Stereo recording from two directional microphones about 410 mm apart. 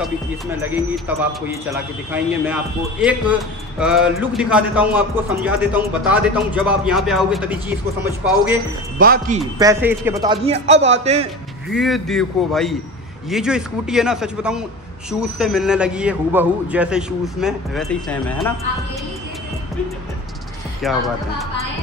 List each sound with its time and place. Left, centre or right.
0.6 s a man's voice: centre
8.9 s speech: right
9.6 s a man's voice: centre
11.7 s a man's voice: centre
20.8 s a man's voice: centre